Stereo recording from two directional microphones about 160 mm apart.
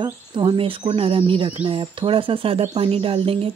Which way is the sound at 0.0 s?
30° right (ahead or behind).